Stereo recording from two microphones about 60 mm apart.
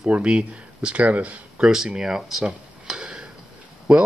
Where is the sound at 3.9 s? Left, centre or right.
Centre.